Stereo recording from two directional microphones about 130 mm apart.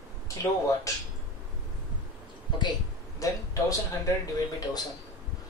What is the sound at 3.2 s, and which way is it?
Speech, 25° left (ahead or behind).